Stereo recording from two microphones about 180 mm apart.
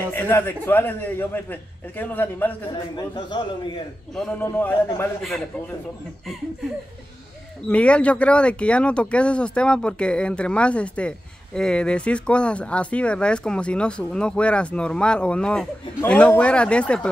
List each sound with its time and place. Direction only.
0.1 s speech: 10° left (ahead or behind)
3.0 s a man's voice: 25° left (ahead or behind)
4.1 s speech: 5° left (ahead or behind)
7.7 s speech: 5° left (ahead or behind)